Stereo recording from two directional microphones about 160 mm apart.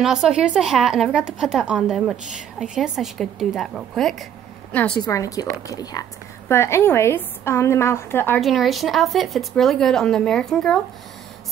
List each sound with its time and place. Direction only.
0.0 s a woman's voice: 5° right (ahead or behind)
5.0 s a woman's voice: 20° left (ahead or behind)
8.4 s speech: centre (ahead or behind)